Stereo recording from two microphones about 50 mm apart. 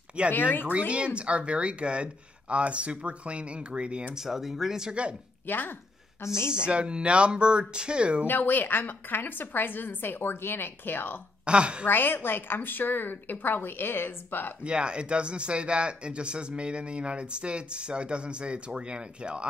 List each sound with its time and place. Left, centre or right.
0.3 s speech: left
0.7 s speech: right
4.2 s speech: centre
5.5 s a woman's voice: left
6.2 s a woman's voice: left
6.5 s speech: right
8.3 s a woman's voice: left
11.4 s speech: right
11.8 s a woman's voice: left
14.6 s speech: right